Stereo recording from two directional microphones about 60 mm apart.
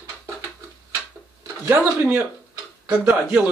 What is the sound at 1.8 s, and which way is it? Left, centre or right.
Speech, right.